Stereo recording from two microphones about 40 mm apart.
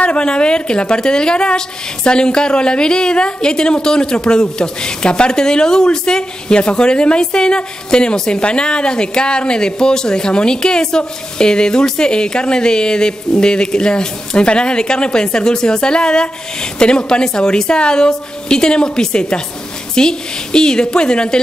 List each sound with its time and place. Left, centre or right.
0.0 s a woman's voice: left